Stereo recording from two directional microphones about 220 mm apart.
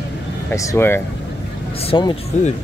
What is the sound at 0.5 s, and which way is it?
Speech, 10° left (ahead or behind).